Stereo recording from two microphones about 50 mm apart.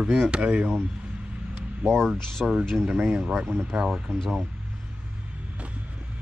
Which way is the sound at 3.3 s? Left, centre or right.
Right.